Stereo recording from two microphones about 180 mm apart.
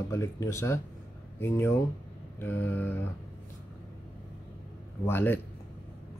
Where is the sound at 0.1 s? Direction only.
15° left (ahead or behind).